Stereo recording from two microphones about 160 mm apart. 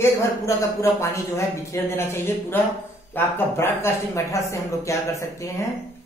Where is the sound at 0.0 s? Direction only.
20° left (ahead or behind).